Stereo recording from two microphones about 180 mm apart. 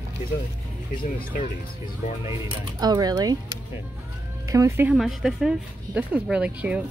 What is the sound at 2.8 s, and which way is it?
Speech, 20° right (ahead or behind).